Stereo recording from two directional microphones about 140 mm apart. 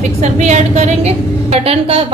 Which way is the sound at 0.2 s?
55° right (ahead or behind).